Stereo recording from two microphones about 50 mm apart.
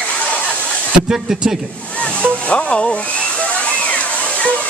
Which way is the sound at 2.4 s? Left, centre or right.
Left.